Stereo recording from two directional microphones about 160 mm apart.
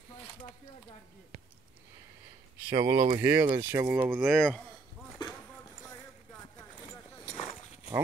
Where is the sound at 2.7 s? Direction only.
20° right (ahead or behind).